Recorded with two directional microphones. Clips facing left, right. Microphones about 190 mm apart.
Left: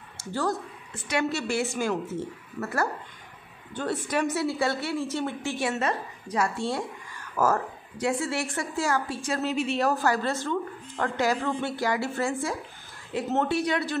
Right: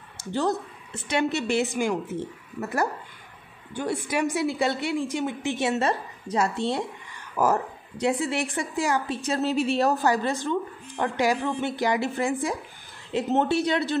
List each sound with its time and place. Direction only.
0.2 s a woman's voice: 20° right (ahead or behind)
9.4 s a woman's voice: 35° right (ahead or behind)
9.8 s a woman's voice: 15° right (ahead or behind)